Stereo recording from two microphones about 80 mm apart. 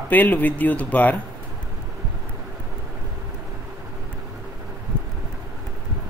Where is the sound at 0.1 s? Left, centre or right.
Left.